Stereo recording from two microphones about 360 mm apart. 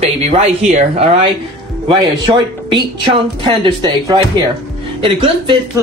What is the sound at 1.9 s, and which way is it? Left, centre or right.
Speech, centre.